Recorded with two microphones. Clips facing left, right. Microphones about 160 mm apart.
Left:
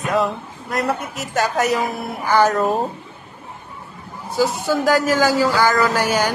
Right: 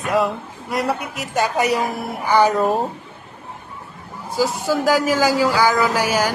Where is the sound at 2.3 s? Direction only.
Centre (ahead or behind).